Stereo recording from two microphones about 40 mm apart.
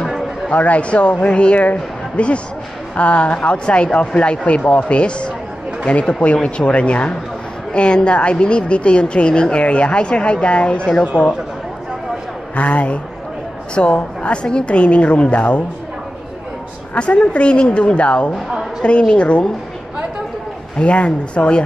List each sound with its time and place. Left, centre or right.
0.5 s a woman's voice: left
12.5 s a man's voice: left
16.9 s a woman's voice: left
20.8 s a woman's voice: left